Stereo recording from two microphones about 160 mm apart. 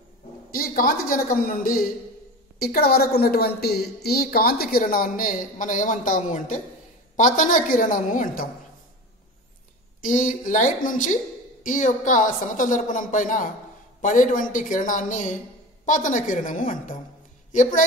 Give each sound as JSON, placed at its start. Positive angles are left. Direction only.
{"t": 0.5, "sound": "a woman's voice", "side_deg": 60}
{"t": 2.6, "sound": "a woman's voice", "side_deg": 75}
{"t": 10.0, "sound": "a woman's voice", "side_deg": 55}